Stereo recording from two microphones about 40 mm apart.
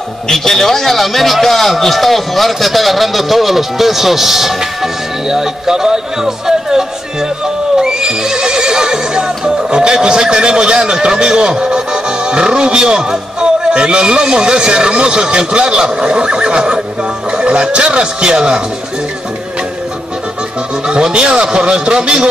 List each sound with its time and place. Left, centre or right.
0.3 s a man's voice: centre; by 18.6 s right
20.8 s speech: right